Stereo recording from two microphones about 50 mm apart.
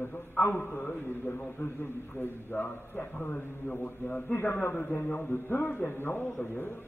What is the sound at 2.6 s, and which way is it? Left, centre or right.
A man's voice, left.